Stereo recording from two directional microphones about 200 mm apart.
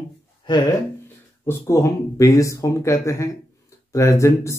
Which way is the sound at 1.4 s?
15° left (ahead or behind).